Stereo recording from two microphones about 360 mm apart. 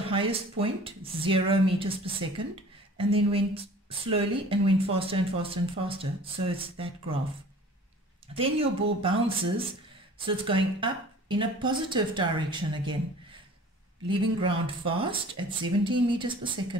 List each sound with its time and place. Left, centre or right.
0.1 s speech: centre
8.4 s speech: centre
10.1 s speech: centre
14.0 s speech: centre